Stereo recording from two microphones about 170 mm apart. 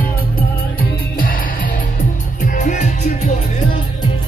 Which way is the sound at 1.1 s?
55° left (ahead or behind).